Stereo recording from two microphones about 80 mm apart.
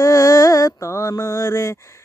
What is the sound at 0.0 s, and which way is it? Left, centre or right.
Mantra, left.